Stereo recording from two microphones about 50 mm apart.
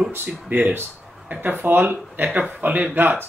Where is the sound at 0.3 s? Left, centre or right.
Right.